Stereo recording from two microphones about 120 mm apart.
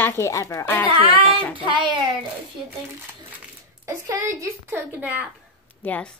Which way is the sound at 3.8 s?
25° right (ahead or behind).